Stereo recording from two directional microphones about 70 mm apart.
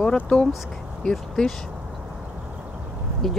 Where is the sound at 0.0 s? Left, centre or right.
Centre.